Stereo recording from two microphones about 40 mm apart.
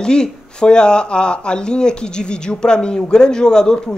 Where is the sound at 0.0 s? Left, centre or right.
Centre.